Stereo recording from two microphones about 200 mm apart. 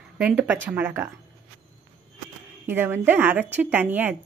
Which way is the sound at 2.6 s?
10° right (ahead or behind).